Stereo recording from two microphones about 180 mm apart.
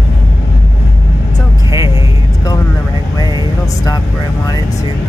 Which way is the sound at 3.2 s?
20° left (ahead or behind).